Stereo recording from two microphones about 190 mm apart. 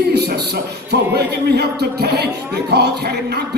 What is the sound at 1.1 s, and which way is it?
Speech, 60° right (ahead or behind).